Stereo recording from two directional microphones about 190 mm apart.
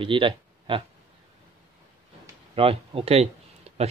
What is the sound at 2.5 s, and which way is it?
Speech, 30° right (ahead or behind).